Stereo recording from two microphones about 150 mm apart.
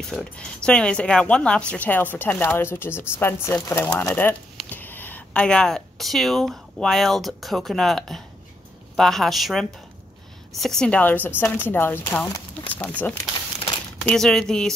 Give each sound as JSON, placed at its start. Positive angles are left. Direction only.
{"t": 0.0, "sound": "a woman's voice", "side_deg": 5}